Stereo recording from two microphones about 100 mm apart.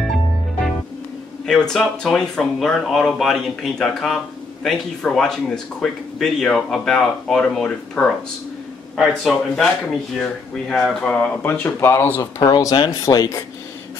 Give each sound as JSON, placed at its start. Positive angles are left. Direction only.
{"t": 1.4, "sound": "speech", "side_deg": 5}
{"t": 10.7, "sound": "speech", "side_deg": 10}
{"t": 12.2, "sound": "speech", "side_deg": 40}